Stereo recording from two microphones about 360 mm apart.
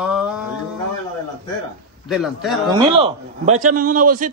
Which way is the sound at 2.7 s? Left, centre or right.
Centre.